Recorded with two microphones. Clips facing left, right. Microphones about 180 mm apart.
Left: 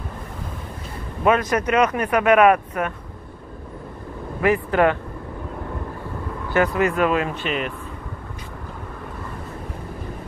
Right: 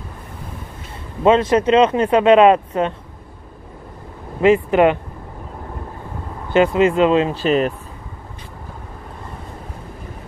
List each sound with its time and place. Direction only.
1.2 s speech: 25° right (ahead or behind)
4.4 s speech: 20° right (ahead or behind)
6.5 s speech: 20° right (ahead or behind)
7.4 s speech: 40° right (ahead or behind)